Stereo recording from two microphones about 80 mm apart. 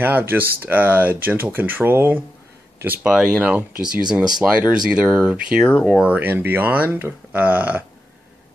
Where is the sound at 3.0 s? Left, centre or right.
Centre.